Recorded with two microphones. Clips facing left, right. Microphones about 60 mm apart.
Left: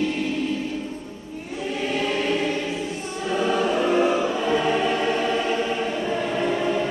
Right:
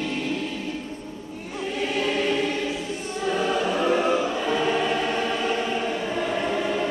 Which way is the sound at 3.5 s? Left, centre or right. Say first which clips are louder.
Left 3 dB; centre.